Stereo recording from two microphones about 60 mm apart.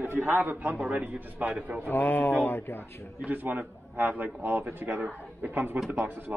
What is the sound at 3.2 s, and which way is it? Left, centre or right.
A man's voice, right.